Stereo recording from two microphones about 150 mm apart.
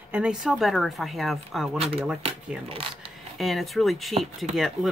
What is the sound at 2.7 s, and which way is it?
Speech, 35° right (ahead or behind).